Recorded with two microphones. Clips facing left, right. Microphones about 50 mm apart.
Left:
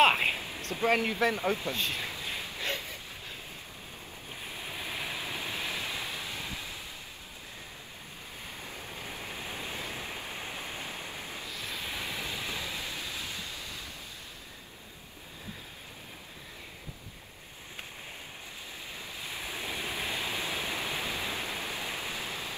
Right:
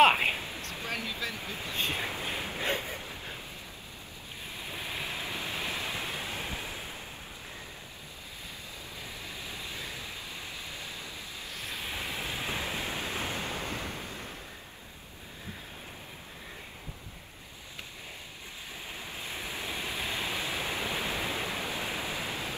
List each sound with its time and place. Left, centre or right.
0.0 s a sound: centre
0.6 s speech: left
1.8 s a sound: right
2.6 s boat: right
5.1 s waves: right
8.9 s waves: left
11.4 s a sound: right
12.0 s waves: right
19.2 s waves: right
19.8 s vehicle: left
20.1 s waterfall: right